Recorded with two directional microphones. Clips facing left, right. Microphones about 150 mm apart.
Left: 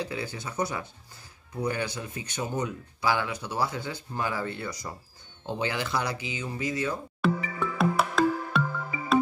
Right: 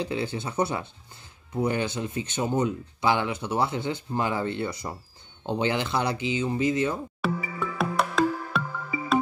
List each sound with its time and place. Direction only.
0.0 s speech: 25° right (ahead or behind)
7.2 s music: centre (ahead or behind)